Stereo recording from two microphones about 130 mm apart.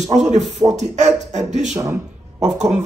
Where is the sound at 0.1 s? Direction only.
65° right (ahead or behind).